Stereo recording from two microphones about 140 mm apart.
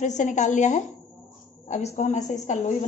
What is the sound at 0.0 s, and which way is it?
Speech, 60° left (ahead or behind).